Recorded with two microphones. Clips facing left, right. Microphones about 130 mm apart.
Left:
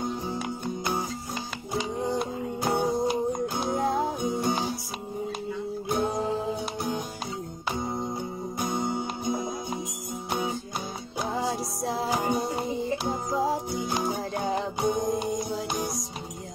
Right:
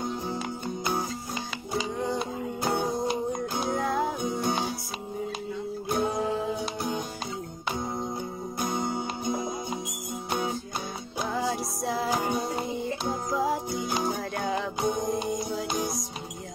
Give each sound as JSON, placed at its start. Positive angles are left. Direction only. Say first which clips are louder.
{"t": 0.0, "sound": "music", "louder": "left 1 dB", "side_deg": 5}
{"t": 5.9, "sound": "music", "louder": "even", "side_deg": 0}
{"t": 11.3, "sound": "music", "louder": "right 1 dB", "side_deg": 25}
{"t": 12.1, "sound": "music", "louder": "left 1 dB", "side_deg": 0}
{"t": 13.3, "sound": "music", "louder": "left 1 dB", "side_deg": 30}
{"t": 13.7, "sound": "music", "louder": "even", "side_deg": 0}